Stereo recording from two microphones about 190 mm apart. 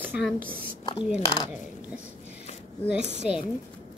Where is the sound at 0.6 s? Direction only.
25° left (ahead or behind).